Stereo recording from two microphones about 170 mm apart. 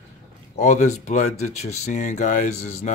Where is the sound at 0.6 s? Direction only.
45° left (ahead or behind).